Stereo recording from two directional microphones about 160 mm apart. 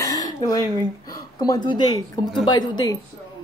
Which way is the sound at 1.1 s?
25° left (ahead or behind).